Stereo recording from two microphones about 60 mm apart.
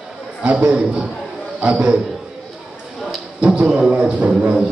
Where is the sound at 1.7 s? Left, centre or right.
Centre.